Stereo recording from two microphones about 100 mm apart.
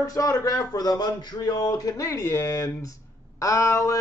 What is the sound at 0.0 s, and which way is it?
Speech, 35° left (ahead or behind).